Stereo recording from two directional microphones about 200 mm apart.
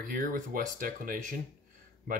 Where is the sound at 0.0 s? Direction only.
45° right (ahead or behind).